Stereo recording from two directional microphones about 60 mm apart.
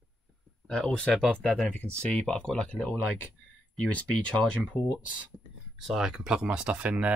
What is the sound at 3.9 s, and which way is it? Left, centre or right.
Speech, centre.